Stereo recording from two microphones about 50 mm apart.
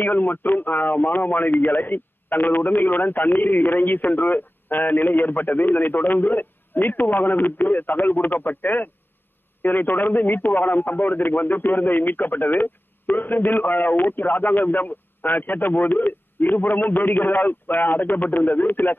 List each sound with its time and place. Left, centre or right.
0.1 s a man's voice: left